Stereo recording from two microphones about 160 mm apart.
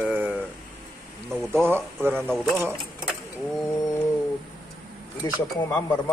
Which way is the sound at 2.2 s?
Centre (ahead or behind).